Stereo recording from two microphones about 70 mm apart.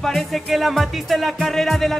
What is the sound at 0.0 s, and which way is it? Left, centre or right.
Music, centre.